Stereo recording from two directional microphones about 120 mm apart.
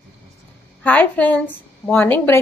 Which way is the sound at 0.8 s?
15° left (ahead or behind).